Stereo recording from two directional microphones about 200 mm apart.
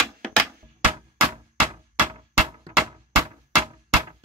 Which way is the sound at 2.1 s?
20° right (ahead or behind).